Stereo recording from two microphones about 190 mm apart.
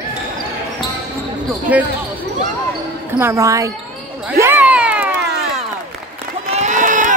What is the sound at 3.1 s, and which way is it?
Speech, 15° right (ahead or behind).